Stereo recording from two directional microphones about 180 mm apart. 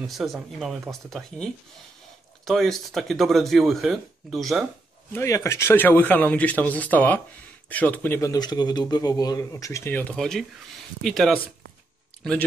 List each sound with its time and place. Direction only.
0.0 s speech: centre (ahead or behind)
5.1 s a man's voice: 15° left (ahead or behind)